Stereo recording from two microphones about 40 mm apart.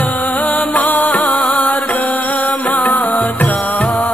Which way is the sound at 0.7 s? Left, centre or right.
Left.